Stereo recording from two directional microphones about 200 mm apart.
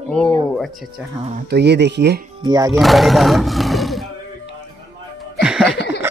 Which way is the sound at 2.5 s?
20° right (ahead or behind).